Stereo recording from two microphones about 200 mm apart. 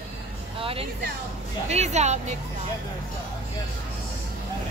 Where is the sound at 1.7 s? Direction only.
35° right (ahead or behind).